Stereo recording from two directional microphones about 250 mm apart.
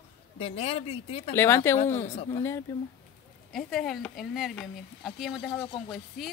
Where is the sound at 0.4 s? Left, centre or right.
Left.